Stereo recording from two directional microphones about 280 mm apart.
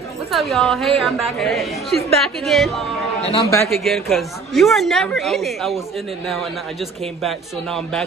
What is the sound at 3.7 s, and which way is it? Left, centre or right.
Speech, centre.